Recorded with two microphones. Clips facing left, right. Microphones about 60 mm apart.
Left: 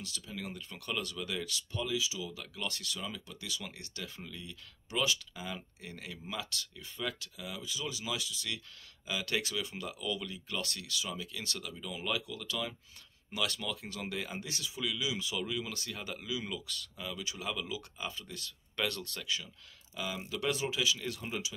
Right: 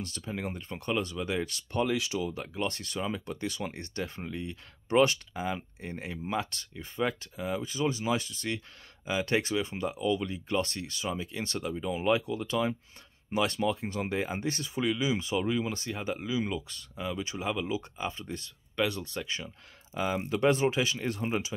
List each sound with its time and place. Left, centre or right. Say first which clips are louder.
0.0 s speech: right 7 dB; right
1.7 s speech: right 7 dB; right
2.4 s speech: right 7 dB; right
18.8 s speech: right 6 dB; centre
19.2 s speech: right 1 dB; right